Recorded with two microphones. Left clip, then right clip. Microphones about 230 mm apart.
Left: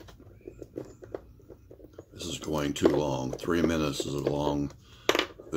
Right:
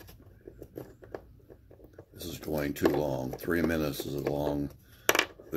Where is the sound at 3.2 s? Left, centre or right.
Centre.